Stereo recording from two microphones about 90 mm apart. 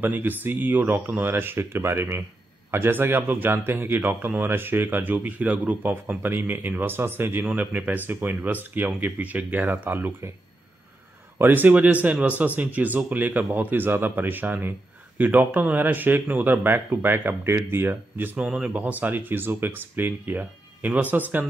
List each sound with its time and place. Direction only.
0.0 s speech: 20° right (ahead or behind)
11.3 s speech: 20° right (ahead or behind)